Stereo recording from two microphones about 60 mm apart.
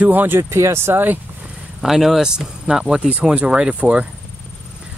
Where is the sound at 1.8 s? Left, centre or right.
Centre.